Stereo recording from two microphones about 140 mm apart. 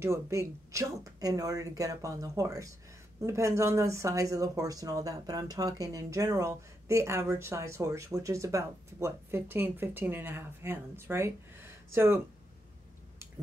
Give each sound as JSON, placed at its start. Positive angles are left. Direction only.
{"t": 0.0, "sound": "speech", "side_deg": -20}